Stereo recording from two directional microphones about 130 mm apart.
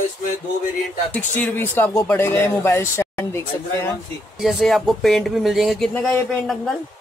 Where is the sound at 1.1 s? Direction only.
15° left (ahead or behind).